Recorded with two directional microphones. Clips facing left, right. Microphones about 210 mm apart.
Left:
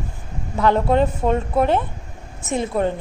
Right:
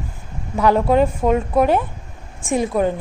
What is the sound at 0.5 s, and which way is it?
A woman's voice, 10° right (ahead or behind).